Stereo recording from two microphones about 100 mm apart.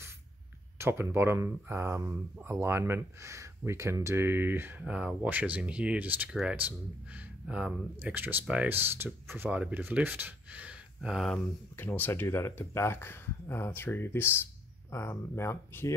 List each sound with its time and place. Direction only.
0.7 s speech: 25° right (ahead or behind); by 11.2 s 5° right (ahead or behind)
11.3 s speech: 20° left (ahead or behind)